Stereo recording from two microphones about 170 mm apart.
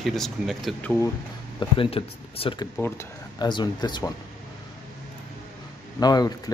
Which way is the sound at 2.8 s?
15° left (ahead or behind).